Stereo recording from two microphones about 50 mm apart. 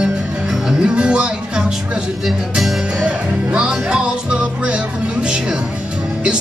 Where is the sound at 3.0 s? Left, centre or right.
Right.